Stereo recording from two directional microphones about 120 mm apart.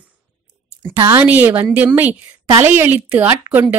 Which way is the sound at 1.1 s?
15° right (ahead or behind).